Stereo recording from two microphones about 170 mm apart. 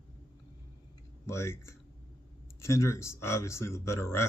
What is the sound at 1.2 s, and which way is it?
Speech, 15° left (ahead or behind).